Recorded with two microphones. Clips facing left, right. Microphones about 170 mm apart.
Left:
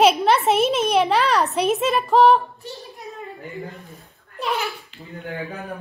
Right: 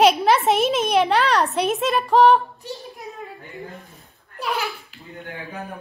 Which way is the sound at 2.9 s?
Centre (ahead or behind).